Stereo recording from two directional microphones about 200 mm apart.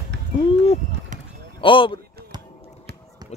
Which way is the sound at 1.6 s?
25° left (ahead or behind).